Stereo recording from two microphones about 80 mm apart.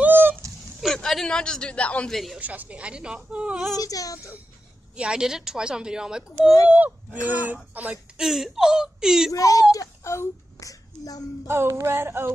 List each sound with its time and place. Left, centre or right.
0.0 s a sound: right
0.9 s a man's voice: centre
2.0 s speech: centre
2.4 s a woman's voice: right
3.7 s a child's voice: left
4.9 s a woman's voice: centre
6.7 s speech: right
8.2 s a woman's voice: centre
9.3 s speech: left
11.4 s a sound: right